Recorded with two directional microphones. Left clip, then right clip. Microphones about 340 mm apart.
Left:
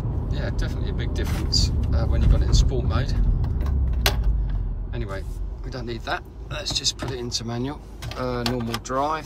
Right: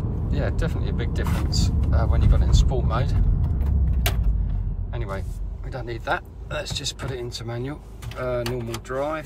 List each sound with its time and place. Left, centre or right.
0.3 s speech: centre
4.9 s speech: centre